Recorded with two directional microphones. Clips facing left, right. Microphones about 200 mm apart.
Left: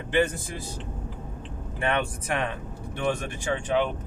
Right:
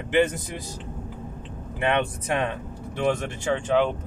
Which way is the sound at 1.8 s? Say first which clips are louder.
Right 3 dB; 20° right (ahead or behind).